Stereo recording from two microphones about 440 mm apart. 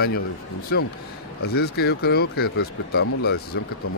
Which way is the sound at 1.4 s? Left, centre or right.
Left.